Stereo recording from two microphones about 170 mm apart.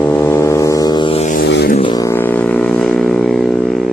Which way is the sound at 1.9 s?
20° left (ahead or behind).